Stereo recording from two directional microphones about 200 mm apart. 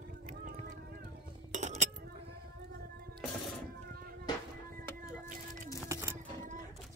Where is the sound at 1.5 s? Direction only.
35° right (ahead or behind).